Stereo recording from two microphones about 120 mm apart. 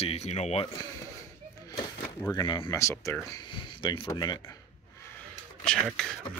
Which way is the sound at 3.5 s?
40° left (ahead or behind).